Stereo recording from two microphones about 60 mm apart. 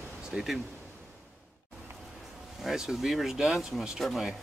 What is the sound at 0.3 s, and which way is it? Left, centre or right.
Speech, centre.